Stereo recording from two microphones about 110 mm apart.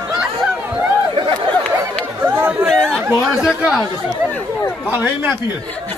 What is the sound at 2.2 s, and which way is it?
Chatter, 15° right (ahead or behind).